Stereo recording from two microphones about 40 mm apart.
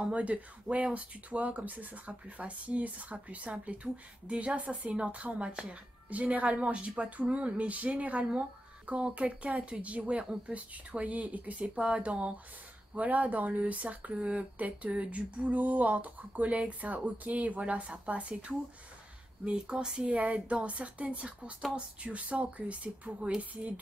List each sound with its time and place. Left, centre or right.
0.0 s speech: right
6.0 s speech: right
19.4 s a sound: right
20.2 s speech: right